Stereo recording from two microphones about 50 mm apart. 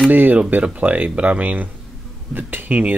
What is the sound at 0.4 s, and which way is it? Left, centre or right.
Speech, right.